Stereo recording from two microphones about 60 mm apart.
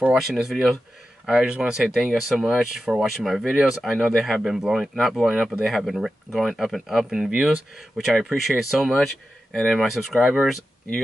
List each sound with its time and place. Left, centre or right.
0.1 s speech: centre
2.0 s speech: centre
8.0 s speech: centre